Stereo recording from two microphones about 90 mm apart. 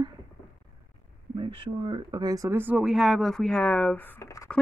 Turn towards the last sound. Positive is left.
turn(degrees=20)  # may be behind; listen again after turning